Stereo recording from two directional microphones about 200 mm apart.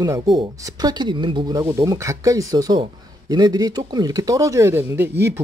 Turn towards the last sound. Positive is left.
turn(degrees=-10)  # may be behind; listen again after turning